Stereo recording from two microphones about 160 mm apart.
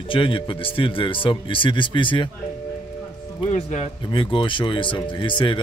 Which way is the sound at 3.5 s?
45° left (ahead or behind).